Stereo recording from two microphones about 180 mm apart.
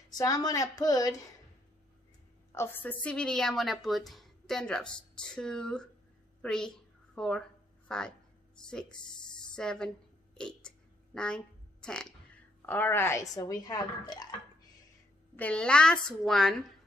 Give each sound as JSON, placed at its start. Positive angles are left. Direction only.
{"t": 0.1, "sound": "a woman's voice", "side_deg": 20}
{"t": 2.5, "sound": "a woman's voice", "side_deg": 10}
{"t": 15.3, "sound": "a woman's voice", "side_deg": 5}